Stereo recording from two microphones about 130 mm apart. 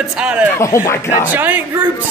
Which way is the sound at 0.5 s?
20° left (ahead or behind).